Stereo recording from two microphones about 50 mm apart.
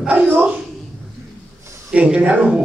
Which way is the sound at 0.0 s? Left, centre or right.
Right.